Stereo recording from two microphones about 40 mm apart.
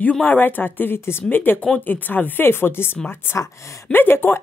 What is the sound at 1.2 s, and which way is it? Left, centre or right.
Speech, left.